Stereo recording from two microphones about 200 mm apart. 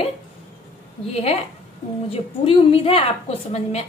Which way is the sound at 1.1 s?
30° left (ahead or behind).